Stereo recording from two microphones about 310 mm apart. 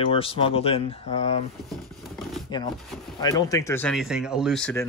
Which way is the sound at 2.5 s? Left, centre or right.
Centre.